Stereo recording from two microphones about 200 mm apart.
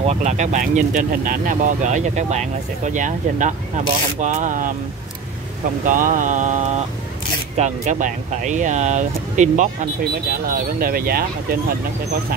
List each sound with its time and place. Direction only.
0.0 s speech: 35° right (ahead or behind)
5.9 s speech: 40° right (ahead or behind)